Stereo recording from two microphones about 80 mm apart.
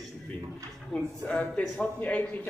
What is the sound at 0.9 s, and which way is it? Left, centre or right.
Speech, centre.